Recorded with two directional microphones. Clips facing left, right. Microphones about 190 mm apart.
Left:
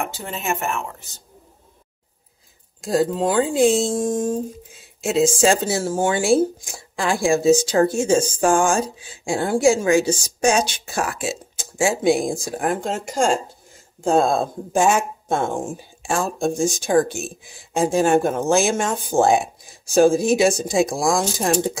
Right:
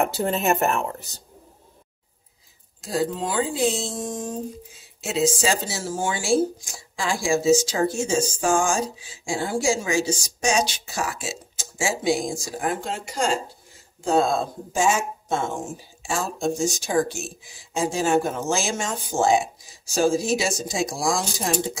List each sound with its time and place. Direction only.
0.0 s speech: 40° right (ahead or behind)
2.8 s speech: 50° left (ahead or behind)